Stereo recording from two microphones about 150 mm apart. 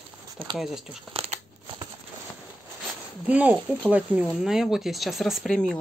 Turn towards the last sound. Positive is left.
turn(degrees=5)  # may be behind; listen again after turning